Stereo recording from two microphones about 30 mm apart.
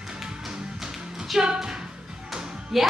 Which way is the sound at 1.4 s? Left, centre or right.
Right.